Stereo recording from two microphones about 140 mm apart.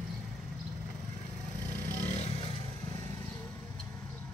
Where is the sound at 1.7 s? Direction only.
60° left (ahead or behind).